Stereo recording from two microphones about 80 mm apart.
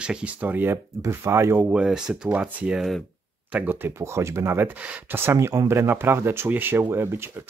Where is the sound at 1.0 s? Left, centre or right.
Right.